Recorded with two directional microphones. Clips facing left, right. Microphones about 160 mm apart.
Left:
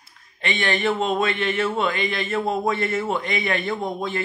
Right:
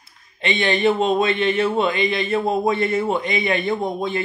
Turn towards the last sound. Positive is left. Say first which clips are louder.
# right 3 dB
turn(degrees=-20)  # may be behind; listen again after turning